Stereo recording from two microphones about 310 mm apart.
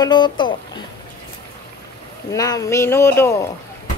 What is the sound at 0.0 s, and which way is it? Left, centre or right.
Speech, centre.